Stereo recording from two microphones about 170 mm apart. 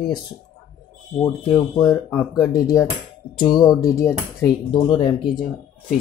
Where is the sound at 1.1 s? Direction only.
20° left (ahead or behind).